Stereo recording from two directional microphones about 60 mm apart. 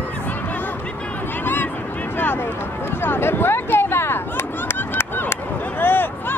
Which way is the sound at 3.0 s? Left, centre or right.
Left.